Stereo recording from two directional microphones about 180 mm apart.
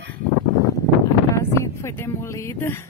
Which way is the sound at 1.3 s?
15° left (ahead or behind).